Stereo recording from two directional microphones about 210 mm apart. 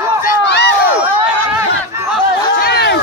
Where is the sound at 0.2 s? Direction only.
45° left (ahead or behind).